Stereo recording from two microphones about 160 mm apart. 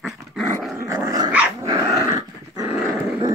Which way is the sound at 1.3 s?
10° right (ahead or behind).